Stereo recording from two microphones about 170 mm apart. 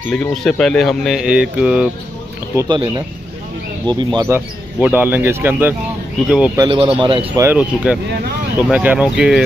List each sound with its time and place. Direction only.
0.1 s speech: 5° left (ahead or behind)
2.5 s speech: 25° right (ahead or behind)
3.9 s speech: 25° right (ahead or behind)
4.3 s speech: 10° right (ahead or behind)
6.6 s speech: 30° right (ahead or behind)
7.3 s speech: 10° right (ahead or behind)